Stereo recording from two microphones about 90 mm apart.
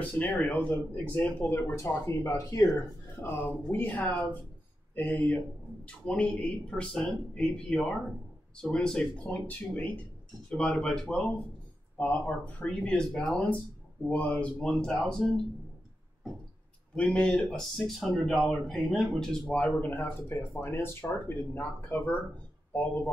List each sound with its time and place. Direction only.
0.0 s speech: 20° left (ahead or behind)
1.5 s speech: 35° left (ahead or behind)
3.2 s speech: 25° left (ahead or behind)
14.3 s speech: 10° left (ahead or behind)
16.9 s speech: 10° left (ahead or behind)